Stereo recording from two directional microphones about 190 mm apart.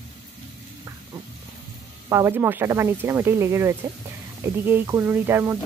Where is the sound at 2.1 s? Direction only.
15° right (ahead or behind).